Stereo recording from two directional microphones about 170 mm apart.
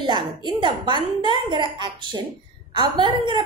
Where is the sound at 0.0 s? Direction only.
25° right (ahead or behind).